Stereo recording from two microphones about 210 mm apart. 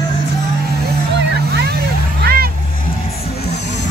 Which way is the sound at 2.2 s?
45° right (ahead or behind).